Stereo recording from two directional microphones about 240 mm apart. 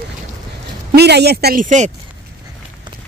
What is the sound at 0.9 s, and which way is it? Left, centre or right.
Speech, right.